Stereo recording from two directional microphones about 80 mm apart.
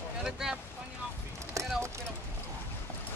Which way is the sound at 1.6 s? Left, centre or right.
Right.